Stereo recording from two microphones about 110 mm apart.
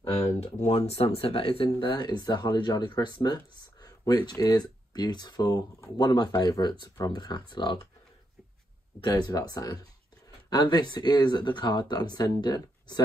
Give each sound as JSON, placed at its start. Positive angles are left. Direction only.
{"t": 0.3, "sound": "speech", "side_deg": 85}
{"t": 9.1, "sound": "speech", "side_deg": 35}